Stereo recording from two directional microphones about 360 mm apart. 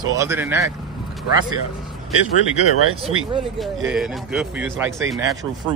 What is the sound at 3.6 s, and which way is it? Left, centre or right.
A man's voice, centre.